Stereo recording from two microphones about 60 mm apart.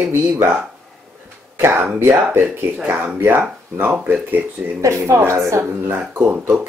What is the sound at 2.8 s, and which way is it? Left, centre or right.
Speech, right.